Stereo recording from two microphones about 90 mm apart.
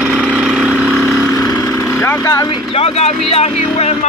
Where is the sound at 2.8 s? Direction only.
90° left.